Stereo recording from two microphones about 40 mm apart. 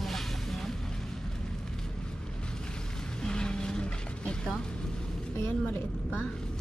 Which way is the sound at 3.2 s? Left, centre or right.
Left.